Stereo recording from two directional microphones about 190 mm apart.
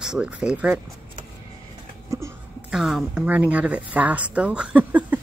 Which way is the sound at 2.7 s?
Centre (ahead or behind).